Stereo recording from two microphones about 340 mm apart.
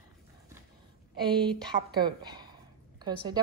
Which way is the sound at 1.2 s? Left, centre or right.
Centre.